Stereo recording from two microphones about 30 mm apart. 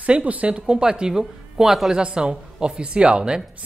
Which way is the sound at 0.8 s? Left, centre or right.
Right.